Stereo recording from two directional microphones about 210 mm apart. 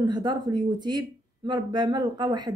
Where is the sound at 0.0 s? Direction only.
20° right (ahead or behind).